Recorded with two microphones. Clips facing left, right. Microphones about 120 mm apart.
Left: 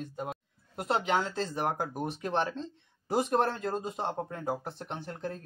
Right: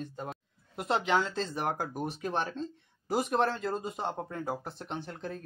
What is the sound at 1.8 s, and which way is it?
Speech, 15° left (ahead or behind).